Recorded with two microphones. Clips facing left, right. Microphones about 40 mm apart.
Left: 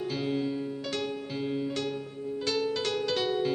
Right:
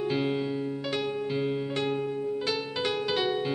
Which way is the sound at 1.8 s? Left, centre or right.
Right.